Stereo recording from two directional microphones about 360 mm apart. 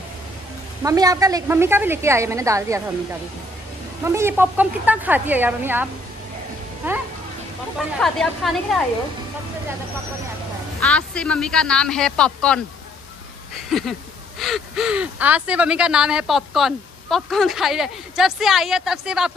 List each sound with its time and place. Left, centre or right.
0.8 s a woman's voice: centre
4.0 s speech: centre
10.8 s speech: centre
13.7 s speech: centre